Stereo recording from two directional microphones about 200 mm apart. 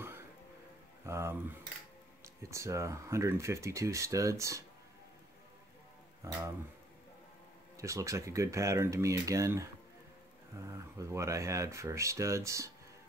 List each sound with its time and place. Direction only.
1.0 s a sound: 15° right (ahead or behind)
2.2 s speech: 15° right (ahead or behind)
7.7 s speech: 15° right (ahead or behind)